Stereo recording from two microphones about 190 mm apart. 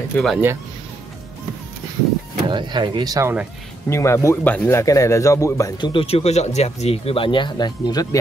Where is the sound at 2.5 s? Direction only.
25° right (ahead or behind).